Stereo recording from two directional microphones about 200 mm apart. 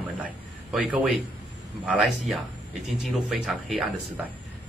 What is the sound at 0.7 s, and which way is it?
A man's voice, 5° right (ahead or behind).